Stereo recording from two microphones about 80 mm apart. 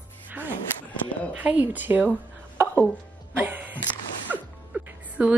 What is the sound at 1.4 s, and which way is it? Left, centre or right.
A woman's voice, centre.